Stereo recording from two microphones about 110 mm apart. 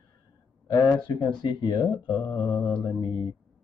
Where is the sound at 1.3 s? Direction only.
45° left (ahead or behind).